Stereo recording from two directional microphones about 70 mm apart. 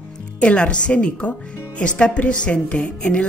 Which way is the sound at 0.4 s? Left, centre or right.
Centre.